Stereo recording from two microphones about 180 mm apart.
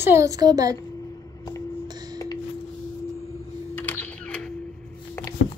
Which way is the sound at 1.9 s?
20° right (ahead or behind).